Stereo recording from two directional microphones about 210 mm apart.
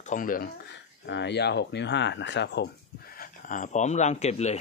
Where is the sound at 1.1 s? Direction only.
55° left (ahead or behind).